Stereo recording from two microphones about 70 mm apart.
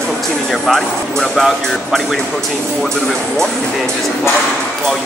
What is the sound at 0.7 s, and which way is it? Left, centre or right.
Speech, centre.